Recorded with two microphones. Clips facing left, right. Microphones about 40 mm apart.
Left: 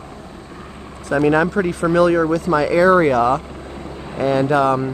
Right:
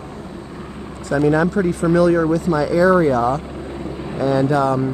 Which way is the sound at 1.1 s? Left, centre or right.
Left.